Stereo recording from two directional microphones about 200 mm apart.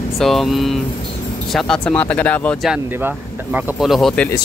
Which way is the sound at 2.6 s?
10° right (ahead or behind).